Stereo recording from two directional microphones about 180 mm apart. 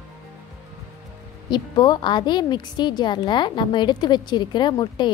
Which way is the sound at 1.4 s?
25° left (ahead or behind).